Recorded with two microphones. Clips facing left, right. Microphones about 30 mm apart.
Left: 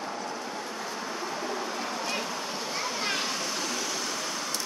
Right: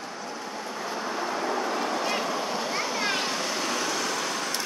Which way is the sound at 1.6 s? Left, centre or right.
Right.